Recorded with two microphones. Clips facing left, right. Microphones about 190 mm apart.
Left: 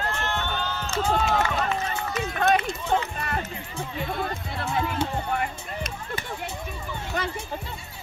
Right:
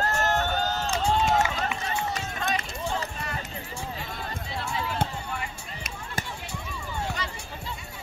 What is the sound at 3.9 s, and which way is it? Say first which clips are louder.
Music: left 7 dB; 55° left (ahead or behind).